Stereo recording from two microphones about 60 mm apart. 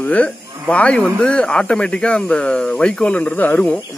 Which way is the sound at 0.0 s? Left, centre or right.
Left.